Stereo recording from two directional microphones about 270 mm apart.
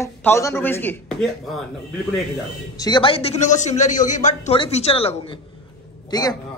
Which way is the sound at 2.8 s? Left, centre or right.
Centre.